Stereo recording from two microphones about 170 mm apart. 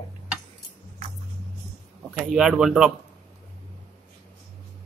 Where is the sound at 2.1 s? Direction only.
Centre (ahead or behind).